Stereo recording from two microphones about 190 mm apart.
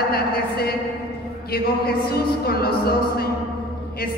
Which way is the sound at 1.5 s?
55° left (ahead or behind).